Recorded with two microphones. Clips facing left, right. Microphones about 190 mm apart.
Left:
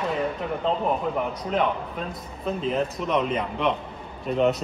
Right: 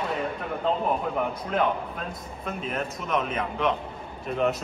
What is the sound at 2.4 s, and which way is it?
A man's voice, centre (ahead or behind).